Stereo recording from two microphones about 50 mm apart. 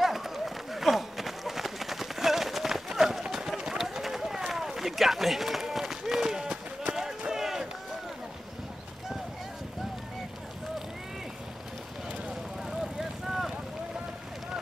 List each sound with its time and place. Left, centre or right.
0.0 s run: centre
12.6 s vehicle: centre